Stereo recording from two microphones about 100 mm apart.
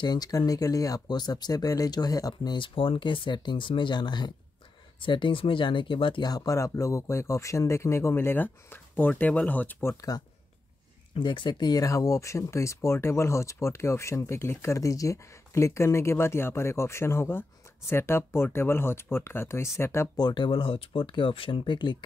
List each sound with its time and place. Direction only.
0.0 s speech: 40° left (ahead or behind)
2.5 s speech: 60° left (ahead or behind)
6.2 s speech: 40° left (ahead or behind); by 9.9 s 20° left (ahead or behind)
11.1 s speech: 55° left (ahead or behind); by 20.1 s 25° left (ahead or behind)
20.2 s speech: 50° left (ahead or behind)